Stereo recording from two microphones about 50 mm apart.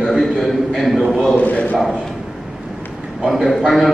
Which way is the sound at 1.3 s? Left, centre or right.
Left.